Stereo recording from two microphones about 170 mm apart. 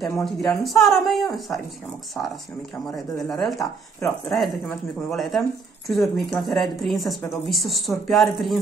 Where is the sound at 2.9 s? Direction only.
20° left (ahead or behind).